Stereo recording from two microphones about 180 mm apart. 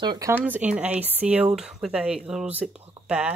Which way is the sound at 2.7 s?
5° right (ahead or behind).